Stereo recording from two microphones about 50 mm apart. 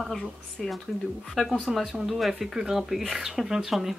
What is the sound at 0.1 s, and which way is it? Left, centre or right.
Speech, centre.